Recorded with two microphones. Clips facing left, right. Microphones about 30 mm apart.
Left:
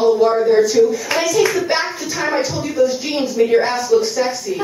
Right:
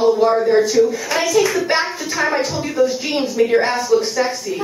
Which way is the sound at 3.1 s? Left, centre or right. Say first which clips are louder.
Left 1 dB; centre.